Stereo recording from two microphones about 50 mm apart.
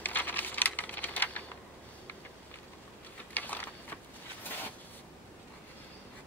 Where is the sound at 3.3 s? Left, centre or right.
Left.